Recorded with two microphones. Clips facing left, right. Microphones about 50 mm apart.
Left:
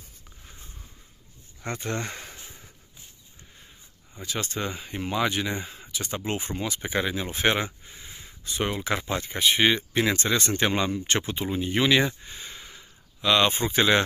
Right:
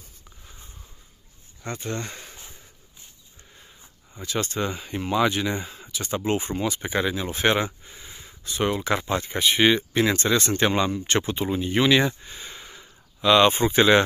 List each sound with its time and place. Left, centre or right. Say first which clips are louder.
1.8 s speech: left 1 dB; left
4.2 s speech: right 4 dB; centre
6.0 s speech: right 6 dB; centre
7.9 s a sound: right 1 dB; centre
8.5 s speech: right 4 dB; centre
8.9 s speech: right 3 dB; centre